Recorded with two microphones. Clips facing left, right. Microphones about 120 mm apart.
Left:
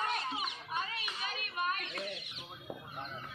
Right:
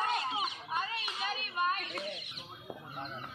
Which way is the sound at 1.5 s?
35° right (ahead or behind).